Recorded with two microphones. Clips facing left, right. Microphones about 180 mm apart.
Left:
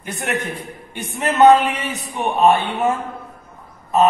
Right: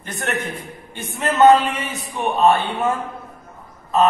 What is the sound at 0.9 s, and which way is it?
A man's voice, 15° left (ahead or behind).